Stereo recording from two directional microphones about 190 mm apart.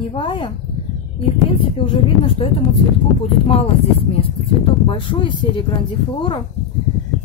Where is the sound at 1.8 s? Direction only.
25° left (ahead or behind).